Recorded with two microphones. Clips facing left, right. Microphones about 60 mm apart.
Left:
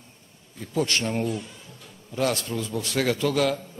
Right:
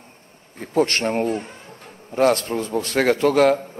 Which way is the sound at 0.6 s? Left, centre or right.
Right.